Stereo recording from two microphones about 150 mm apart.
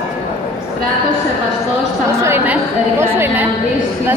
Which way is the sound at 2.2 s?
15° right (ahead or behind).